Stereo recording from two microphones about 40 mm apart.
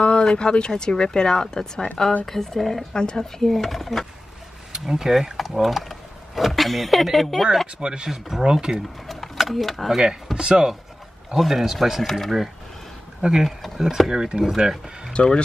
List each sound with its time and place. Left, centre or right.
0.0 s a woman's voice: left
2.2 s speech: centre
2.9 s speech: centre
4.7 s speech: centre
7.8 s speech: right
8.1 s speech: centre
9.0 s a sound: centre
9.8 s speech: centre
10.3 s speech: right
11.3 s speech: centre
12.1 s speech: centre
13.2 s speech: right
13.7 s speech: centre
15.1 s a woman's voice: left